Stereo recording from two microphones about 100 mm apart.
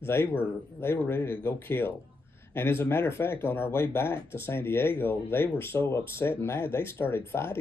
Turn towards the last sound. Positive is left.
turn(degrees=25)  # may be behind; listen again after turning